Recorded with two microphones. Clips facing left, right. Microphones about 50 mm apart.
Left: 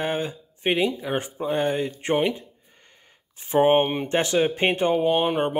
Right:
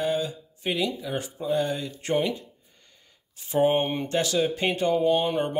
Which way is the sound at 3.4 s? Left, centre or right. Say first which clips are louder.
Left 4 dB; left.